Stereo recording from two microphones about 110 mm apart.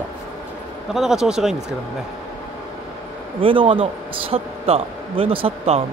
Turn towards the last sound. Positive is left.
turn(degrees=-60)  # may be behind; listen again after turning